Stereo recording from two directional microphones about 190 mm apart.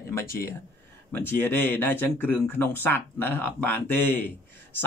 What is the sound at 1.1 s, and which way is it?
Speech, 10° left (ahead or behind).